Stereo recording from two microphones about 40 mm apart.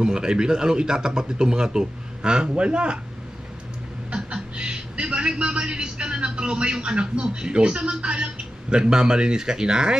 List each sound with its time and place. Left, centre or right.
0.0 s speech: centre
4.1 s a man's voice: right